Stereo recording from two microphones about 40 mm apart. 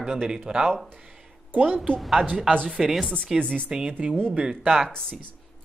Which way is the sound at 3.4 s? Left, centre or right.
Left.